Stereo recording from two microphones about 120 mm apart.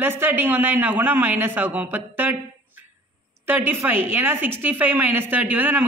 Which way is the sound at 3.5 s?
20° right (ahead or behind).